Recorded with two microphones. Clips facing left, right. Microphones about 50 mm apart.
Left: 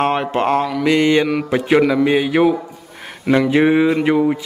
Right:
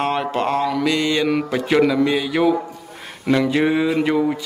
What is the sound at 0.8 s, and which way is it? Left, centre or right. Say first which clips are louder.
Mantra: left 5 dB; left.